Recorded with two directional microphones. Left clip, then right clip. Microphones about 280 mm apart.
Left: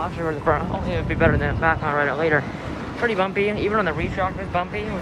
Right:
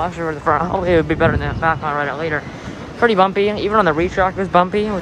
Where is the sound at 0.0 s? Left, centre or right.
Centre.